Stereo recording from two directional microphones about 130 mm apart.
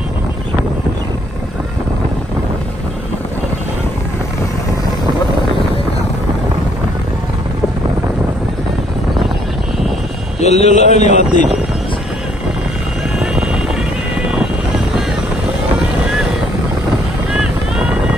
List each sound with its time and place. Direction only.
10.4 s a man's voice: 60° left (ahead or behind)
13.2 s vehicle: 5° right (ahead or behind)